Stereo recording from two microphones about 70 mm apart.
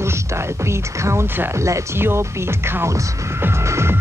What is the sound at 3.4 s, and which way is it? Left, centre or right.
Music, right.